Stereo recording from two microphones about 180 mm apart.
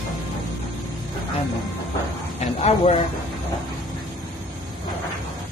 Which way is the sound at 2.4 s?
35° left (ahead or behind).